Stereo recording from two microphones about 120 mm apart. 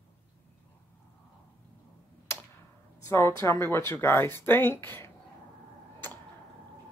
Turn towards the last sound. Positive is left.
turn(degrees=20)  # may be behind; listen again after turning